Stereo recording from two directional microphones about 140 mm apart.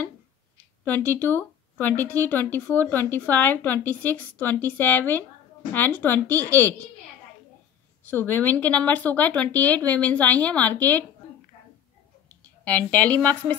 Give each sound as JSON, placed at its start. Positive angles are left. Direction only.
{"t": 0.8, "sound": "speech", "side_deg": 15}
{"t": 8.1, "sound": "speech", "side_deg": 15}
{"t": 12.6, "sound": "speech", "side_deg": 10}